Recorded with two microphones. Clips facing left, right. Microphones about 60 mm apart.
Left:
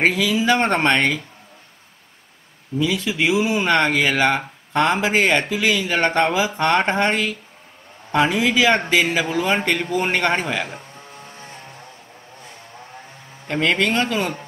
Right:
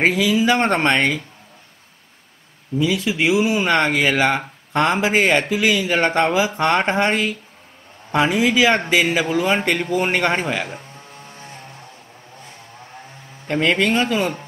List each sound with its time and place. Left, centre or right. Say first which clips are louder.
0.0 s speech: right 2 dB; centre
2.8 s speech: right 1 dB; centre
4.7 s speech: even; centre
5.0 s speech: right 1 dB; centre
11.4 s music: right 1 dB; centre
13.5 s speech: right 2 dB; centre